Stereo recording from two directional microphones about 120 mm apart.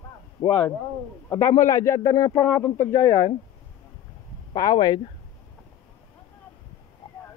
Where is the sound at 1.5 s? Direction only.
25° left (ahead or behind).